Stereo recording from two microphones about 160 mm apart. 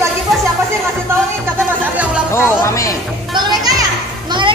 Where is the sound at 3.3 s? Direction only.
25° right (ahead or behind).